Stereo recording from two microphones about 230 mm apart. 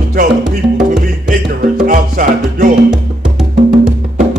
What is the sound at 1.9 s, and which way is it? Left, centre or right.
Music, right.